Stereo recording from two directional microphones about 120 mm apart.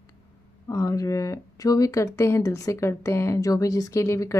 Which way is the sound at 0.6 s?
25° left (ahead or behind).